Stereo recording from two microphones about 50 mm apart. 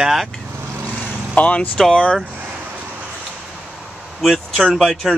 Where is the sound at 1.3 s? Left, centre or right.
Left.